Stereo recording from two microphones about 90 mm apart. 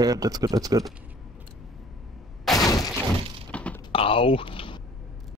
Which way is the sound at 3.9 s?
90° left.